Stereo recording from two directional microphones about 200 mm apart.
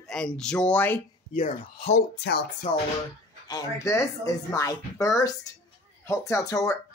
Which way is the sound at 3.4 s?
20° left (ahead or behind).